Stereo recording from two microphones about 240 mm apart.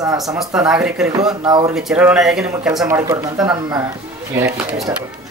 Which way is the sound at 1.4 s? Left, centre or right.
Centre.